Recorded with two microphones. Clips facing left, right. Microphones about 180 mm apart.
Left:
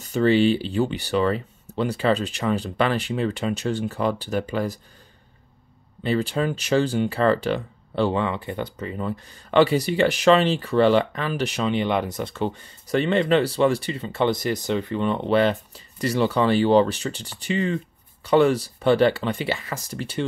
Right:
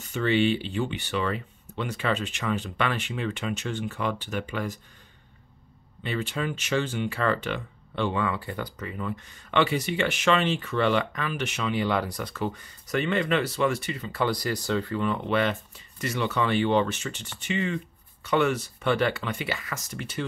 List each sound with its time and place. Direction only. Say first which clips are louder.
0.0 s speech: left 5 dB; 35° left (ahead or behind)
6.0 s speech: left 7 dB; 35° left (ahead or behind)